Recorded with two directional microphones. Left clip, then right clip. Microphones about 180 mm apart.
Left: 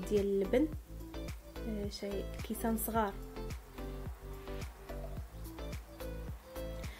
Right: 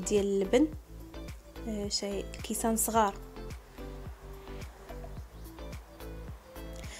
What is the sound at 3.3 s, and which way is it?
Music, centre (ahead or behind).